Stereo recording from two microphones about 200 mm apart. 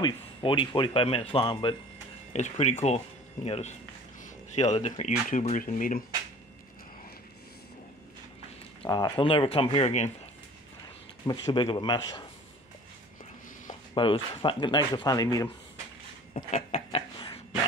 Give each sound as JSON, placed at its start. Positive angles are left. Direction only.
{"t": 0.0, "sound": "speech", "side_deg": 25}
{"t": 2.3, "sound": "speech", "side_deg": 35}
{"t": 8.8, "sound": "speech", "side_deg": 20}
{"t": 11.2, "sound": "speech", "side_deg": 25}
{"t": 13.9, "sound": "speech", "side_deg": 25}
{"t": 16.3, "sound": "a sound", "side_deg": 35}